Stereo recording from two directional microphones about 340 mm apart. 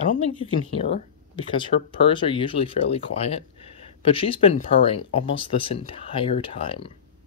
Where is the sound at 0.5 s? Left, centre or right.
Centre.